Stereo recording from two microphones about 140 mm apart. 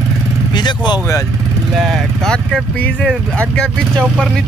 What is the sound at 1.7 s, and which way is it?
Speech, centre (ahead or behind).